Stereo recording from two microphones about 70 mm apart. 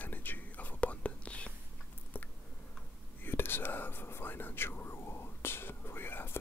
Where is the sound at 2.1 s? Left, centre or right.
Left.